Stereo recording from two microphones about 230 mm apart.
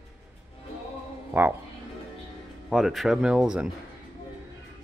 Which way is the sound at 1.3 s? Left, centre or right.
Centre.